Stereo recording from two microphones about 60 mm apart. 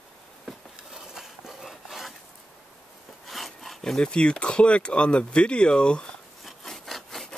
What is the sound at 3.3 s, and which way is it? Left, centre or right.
Speech, centre.